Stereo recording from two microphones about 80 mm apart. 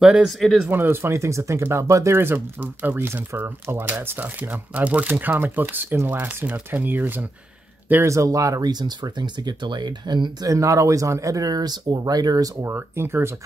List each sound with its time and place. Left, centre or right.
0.0 s speech: centre
0.3 s speech: centre
0.7 s speech: right
7.9 s speech: right
10.5 s speech: right
12.6 s speech: right